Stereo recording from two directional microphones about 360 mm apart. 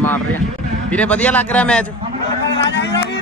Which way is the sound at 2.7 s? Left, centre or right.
Left.